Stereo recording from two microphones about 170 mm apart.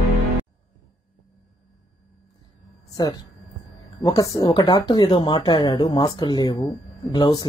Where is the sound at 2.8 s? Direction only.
25° left (ahead or behind).